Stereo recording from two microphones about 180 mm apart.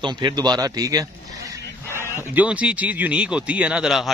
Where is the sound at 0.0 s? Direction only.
25° right (ahead or behind).